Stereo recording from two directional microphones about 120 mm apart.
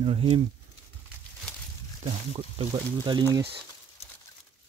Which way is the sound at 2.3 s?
50° right (ahead or behind).